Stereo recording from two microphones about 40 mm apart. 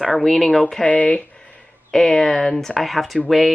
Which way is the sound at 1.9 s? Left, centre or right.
Centre.